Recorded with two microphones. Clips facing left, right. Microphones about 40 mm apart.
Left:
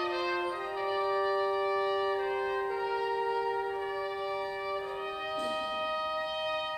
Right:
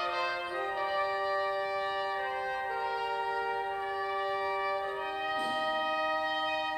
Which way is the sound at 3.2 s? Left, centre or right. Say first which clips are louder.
Left 2 dB; right.